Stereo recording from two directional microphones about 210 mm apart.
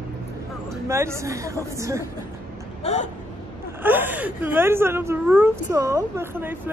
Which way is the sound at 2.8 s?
30° left (ahead or behind).